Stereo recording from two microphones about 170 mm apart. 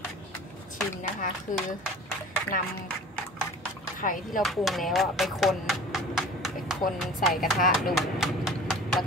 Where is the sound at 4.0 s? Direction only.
50° left (ahead or behind).